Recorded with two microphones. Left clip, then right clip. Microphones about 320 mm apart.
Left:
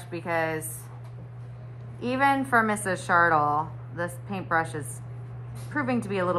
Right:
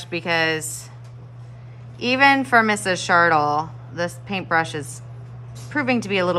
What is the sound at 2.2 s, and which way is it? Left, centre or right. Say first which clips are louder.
Speech: right 7 dB; right.